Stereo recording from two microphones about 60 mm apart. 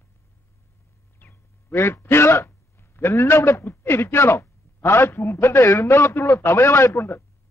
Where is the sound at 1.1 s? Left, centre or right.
Left.